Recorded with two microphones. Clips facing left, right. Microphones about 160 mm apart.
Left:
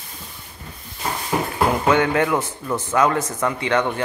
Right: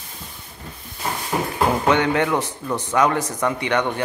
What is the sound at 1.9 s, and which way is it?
Speech, 20° right (ahead or behind).